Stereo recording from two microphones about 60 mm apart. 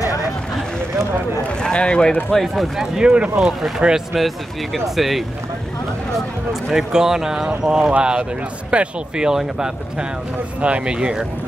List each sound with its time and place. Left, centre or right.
1.6 s speech: centre
2.3 s speech: centre
3.0 s speech: centre
6.7 s speech: centre